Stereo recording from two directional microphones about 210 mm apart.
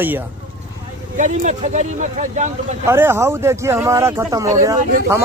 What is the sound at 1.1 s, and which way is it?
Speech, 35° right (ahead or behind).